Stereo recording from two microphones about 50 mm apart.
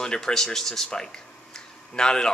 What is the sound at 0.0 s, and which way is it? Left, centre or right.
A man's voice, centre.